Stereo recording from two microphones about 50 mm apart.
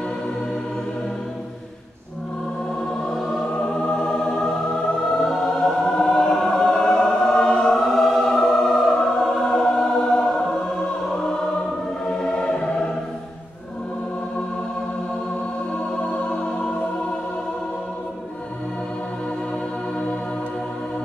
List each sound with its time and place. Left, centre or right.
3.1 s music: centre
5.2 s choir: centre
7.8 s music: centre
12.1 s music: centre
16.0 s music: left